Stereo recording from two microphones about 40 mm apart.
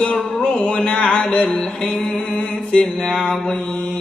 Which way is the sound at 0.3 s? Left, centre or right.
Left.